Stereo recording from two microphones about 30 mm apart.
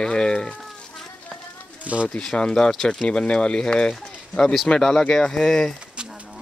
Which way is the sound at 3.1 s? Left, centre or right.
Left.